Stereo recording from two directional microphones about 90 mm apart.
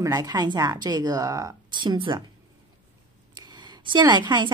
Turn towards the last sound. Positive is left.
turn(degrees=-55)  # may be behind; listen again after turning